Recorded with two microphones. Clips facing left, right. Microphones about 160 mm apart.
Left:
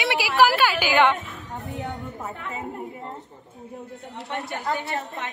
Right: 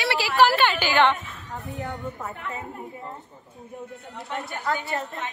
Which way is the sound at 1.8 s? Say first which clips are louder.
Right 2 dB; 20° left (ahead or behind).